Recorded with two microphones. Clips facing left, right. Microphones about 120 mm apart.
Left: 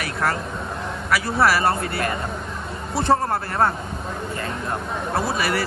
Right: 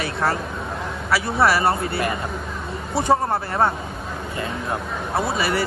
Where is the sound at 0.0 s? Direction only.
25° right (ahead or behind).